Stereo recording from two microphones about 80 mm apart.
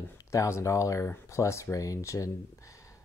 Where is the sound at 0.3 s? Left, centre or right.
Left.